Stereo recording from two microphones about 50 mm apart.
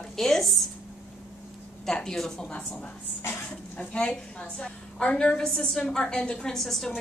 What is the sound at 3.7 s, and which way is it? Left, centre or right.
A woman's voice, centre.